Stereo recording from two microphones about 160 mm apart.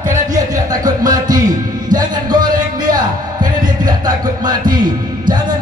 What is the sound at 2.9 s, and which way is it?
Music, 25° right (ahead or behind).